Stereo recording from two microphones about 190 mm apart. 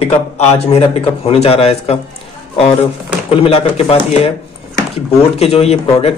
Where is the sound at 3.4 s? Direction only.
30° left (ahead or behind).